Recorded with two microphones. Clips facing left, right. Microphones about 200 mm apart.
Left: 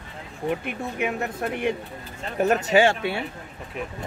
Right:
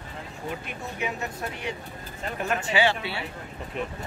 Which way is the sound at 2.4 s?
40° left (ahead or behind).